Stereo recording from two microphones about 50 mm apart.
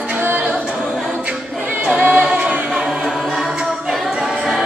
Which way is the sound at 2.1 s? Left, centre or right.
Right.